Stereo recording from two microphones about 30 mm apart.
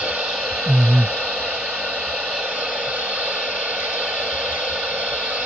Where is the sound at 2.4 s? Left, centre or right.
Right.